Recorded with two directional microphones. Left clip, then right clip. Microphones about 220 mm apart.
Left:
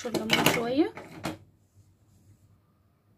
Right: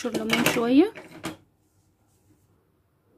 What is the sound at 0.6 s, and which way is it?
Speech, 50° right (ahead or behind).